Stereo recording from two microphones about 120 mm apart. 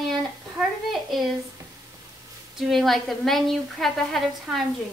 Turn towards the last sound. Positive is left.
turn(degrees=0)  # may be behind; listen again after turning